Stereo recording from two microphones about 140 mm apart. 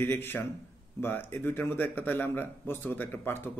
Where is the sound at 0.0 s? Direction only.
15° left (ahead or behind).